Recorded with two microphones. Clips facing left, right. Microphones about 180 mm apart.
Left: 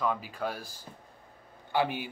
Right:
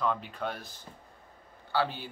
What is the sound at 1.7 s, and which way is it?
Speech, 15° left (ahead or behind).